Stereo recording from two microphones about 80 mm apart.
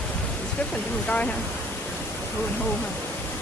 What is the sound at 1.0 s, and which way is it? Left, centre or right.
Speech, centre.